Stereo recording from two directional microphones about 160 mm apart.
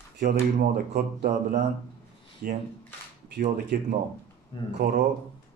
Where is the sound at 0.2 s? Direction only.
75° right (ahead or behind).